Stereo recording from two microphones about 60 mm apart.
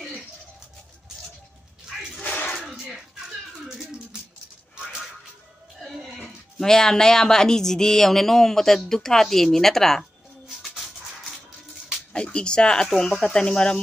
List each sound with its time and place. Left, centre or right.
2.1 s a sound: left
2.6 s slap: centre
5.9 s music: centre
6.2 s speech: centre
12.1 s speech: centre
12.8 s speech: centre